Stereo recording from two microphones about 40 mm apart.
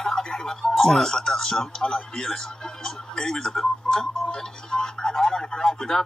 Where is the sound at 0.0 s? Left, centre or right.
Centre.